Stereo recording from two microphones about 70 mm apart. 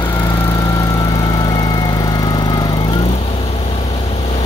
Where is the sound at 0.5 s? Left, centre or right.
Left.